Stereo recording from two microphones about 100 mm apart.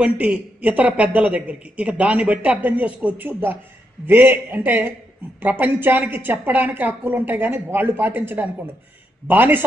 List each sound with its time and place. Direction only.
0.0 s a woman's voice: 15° right (ahead or behind)